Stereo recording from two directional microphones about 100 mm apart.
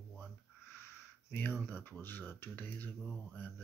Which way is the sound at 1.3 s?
20° left (ahead or behind).